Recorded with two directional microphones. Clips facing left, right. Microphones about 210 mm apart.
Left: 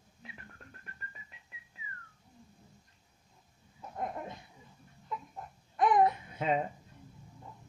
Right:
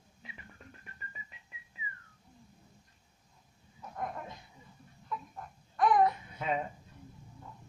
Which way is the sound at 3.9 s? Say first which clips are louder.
Left 1 dB; 25° left (ahead or behind).